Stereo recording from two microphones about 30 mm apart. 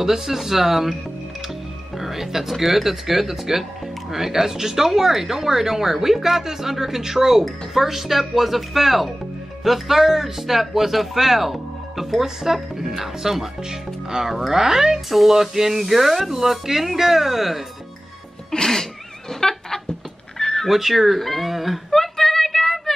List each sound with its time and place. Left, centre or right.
0.0 s speech: centre
2.0 s music: centre
2.6 s speech: centre
13.6 s speech: right
14.3 s speech: centre
14.6 s speech: centre
15.0 s speech: centre
18.5 s music: centre
20.3 s cat: centre
20.6 s speech: centre
21.9 s a sound: centre